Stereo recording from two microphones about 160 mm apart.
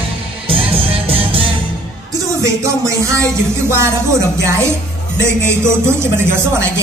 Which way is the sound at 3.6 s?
15° right (ahead or behind).